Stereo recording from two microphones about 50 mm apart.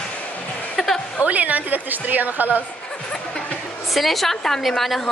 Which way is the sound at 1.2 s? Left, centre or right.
Right.